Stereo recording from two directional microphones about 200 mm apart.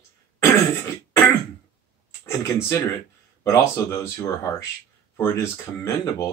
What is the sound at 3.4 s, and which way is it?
Speech, 15° left (ahead or behind).